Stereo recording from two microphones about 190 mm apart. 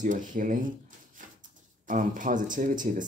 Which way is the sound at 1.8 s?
45° right (ahead or behind).